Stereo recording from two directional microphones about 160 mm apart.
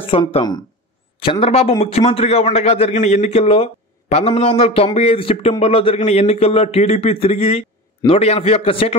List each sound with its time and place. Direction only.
0.0 s a man's voice: 35° left (ahead or behind)